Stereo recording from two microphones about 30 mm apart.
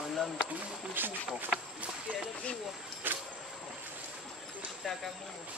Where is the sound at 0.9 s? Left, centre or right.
Right.